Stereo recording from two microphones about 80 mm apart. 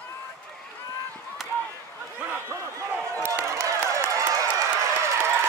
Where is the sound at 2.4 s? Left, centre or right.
Right.